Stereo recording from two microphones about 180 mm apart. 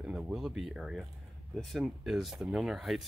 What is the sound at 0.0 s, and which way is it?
Speech, 5° right (ahead or behind).